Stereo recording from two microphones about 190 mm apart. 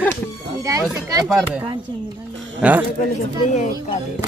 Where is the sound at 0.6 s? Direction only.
15° right (ahead or behind).